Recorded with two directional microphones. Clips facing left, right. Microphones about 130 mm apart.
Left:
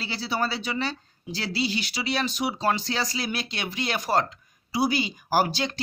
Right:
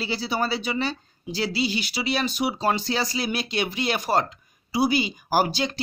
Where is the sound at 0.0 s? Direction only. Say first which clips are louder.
Right 2 dB; 15° right (ahead or behind).